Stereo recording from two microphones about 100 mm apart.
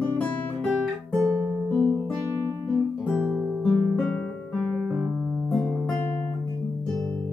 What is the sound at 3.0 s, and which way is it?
Guitar, 10° right (ahead or behind).